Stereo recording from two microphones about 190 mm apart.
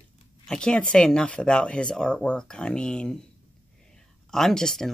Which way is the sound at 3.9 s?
Centre (ahead or behind).